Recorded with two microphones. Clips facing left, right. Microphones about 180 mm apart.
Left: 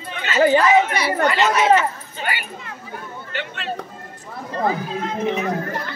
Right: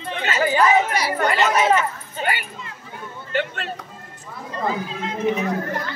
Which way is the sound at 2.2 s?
45° right (ahead or behind).